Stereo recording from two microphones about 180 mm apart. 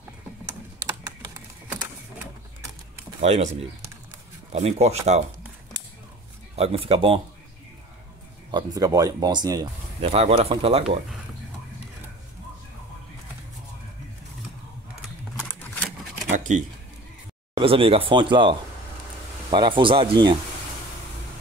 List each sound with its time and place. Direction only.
0.5 s typing: 20° right (ahead or behind)
3.2 s speech: 35° right (ahead or behind)
6.5 s speech: 35° right (ahead or behind)
8.5 s speech: 20° right (ahead or behind)
10.0 s speech: 35° right (ahead or behind)
15.4 s a sound: 10° left (ahead or behind)
16.3 s a sound: 45° right (ahead or behind)
17.6 s speech: 30° right (ahead or behind)